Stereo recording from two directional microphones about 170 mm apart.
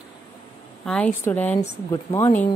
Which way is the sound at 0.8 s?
5° left (ahead or behind).